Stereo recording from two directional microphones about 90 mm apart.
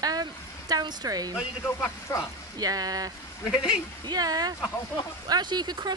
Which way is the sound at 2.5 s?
45° right (ahead or behind).